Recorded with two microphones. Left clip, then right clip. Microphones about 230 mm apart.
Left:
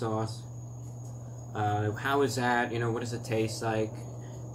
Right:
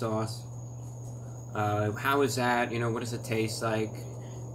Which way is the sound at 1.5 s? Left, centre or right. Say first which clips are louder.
Right 1 dB; centre.